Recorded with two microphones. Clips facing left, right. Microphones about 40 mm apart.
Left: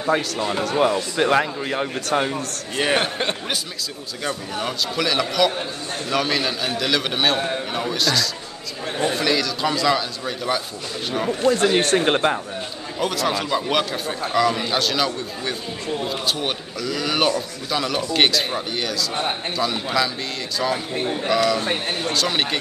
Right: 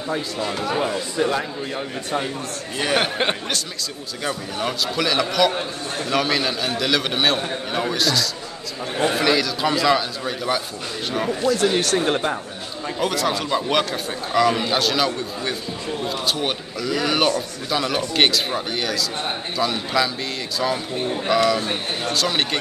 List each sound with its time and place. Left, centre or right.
0.4 s speech: left
0.7 s speech: left
3.0 s speech: centre
4.6 s a man's voice: centre
11.4 s speech: left
13.0 s a man's voice: centre
20.6 s a man's voice: centre
21.2 s a man's voice: centre
21.5 s speech: left
22.1 s a man's voice: centre